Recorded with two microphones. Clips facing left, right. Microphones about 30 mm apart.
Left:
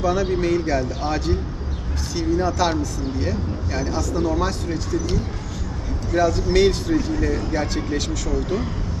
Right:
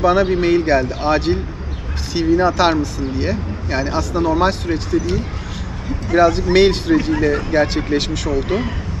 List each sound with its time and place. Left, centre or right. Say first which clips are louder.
0.0 s speech: right 6 dB; right
6.0 s speech: right 6 dB; right